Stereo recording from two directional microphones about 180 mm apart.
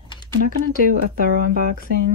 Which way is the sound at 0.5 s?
50° right (ahead or behind).